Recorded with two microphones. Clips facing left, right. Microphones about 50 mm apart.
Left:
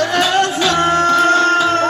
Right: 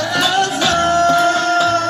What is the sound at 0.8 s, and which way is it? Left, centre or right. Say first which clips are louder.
Music: even; left.